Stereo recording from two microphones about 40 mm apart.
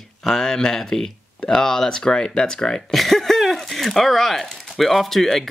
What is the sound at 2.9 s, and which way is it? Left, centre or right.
Speech, centre.